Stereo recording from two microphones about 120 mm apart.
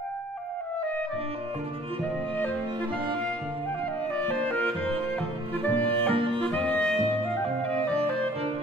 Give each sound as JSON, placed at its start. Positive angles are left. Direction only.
{"t": 5.7, "sound": "music", "side_deg": 15}
{"t": 6.1, "sound": "music", "side_deg": -45}
{"t": 6.4, "sound": "music", "side_deg": 10}